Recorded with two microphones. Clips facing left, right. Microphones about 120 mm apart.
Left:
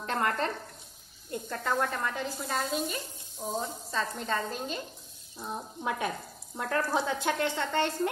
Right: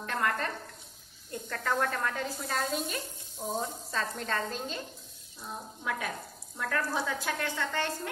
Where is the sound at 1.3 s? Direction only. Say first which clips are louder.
Left 1 dB; 15° left (ahead or behind).